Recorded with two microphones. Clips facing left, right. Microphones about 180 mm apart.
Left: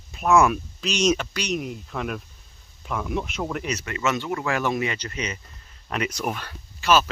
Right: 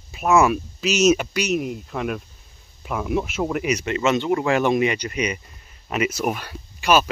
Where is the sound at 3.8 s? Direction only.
20° right (ahead or behind).